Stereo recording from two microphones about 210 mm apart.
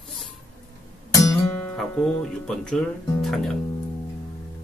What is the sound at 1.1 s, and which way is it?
Speech, 10° left (ahead or behind).